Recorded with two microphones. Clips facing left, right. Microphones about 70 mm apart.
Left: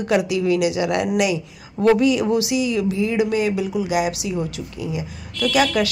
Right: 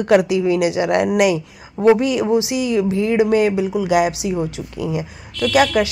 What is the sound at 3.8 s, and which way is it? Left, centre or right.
Speech, right.